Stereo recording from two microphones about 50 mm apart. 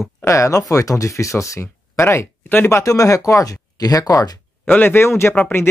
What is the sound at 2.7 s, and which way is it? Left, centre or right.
Speech, left.